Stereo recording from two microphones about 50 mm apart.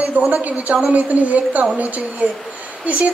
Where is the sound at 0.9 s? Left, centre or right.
Right.